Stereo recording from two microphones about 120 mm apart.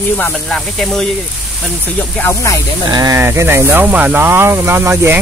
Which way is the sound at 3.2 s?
20° right (ahead or behind).